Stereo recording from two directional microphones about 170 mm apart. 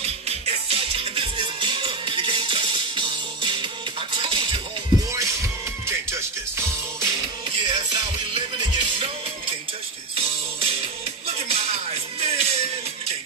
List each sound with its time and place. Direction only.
0.0 s music: 35° right (ahead or behind)
5.1 s music: 15° right (ahead or behind)
7.6 s music: 30° right (ahead or behind)
10.1 s music: 35° right (ahead or behind)